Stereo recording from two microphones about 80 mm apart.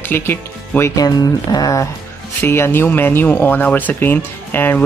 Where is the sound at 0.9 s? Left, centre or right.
Left.